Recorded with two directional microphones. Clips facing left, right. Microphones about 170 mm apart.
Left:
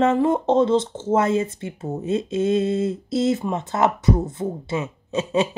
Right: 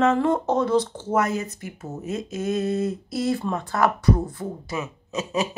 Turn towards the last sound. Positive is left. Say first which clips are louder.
# left 5 dB
turn(degrees=30)  # may be behind; listen again after turning